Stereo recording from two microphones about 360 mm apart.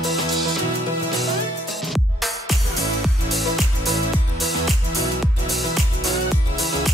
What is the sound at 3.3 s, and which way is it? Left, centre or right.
Music, centre.